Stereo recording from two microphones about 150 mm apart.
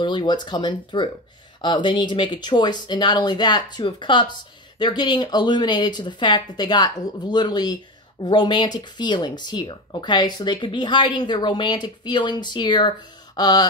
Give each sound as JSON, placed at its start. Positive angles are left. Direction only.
{"t": 0.0, "sound": "speech", "side_deg": 30}